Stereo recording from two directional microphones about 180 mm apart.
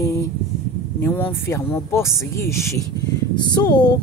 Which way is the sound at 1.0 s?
10° left (ahead or behind).